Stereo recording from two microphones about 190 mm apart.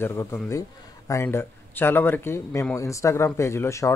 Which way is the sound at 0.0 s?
15° left (ahead or behind).